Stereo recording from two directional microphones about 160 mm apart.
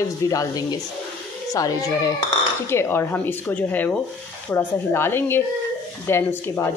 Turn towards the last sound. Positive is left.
turn(degrees=15)  # may be behind; listen again after turning